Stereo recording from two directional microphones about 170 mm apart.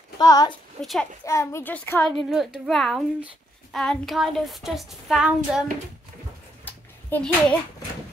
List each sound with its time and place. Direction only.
0.2 s a woman's voice: 20° left (ahead or behind)
0.7 s child singing: 5° left (ahead or behind)
1.2 s a child's voice: 15° left (ahead or behind)
2.1 s child singing: 5° right (ahead or behind)
6.6 s a sound: 10° left (ahead or behind)